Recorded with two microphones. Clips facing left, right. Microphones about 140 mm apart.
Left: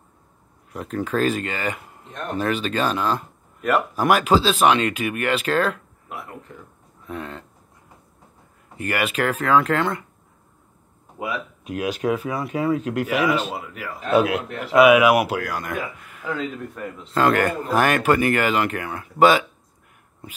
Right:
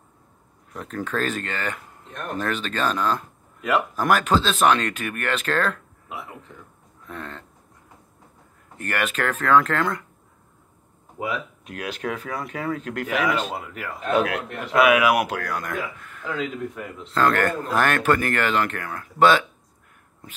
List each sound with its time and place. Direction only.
0.7 s speech: 5° left (ahead or behind)
7.1 s a sound: 5° left (ahead or behind)
8.7 s speech: 10° left (ahead or behind)
11.2 s speech: 10° left (ahead or behind)
12.3 s a sound: 5° left (ahead or behind)
12.6 s speech: 10° left (ahead or behind)
15.1 s speech: 5° left (ahead or behind)